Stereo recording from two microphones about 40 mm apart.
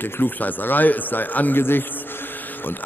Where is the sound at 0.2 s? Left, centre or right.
Left.